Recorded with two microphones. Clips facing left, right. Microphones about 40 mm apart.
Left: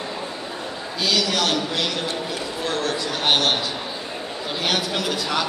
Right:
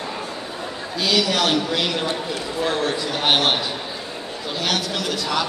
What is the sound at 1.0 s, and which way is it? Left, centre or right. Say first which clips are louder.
Speech: right 2 dB; centre.